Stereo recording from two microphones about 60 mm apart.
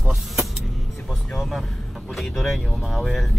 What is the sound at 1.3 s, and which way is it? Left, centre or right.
Speech, centre.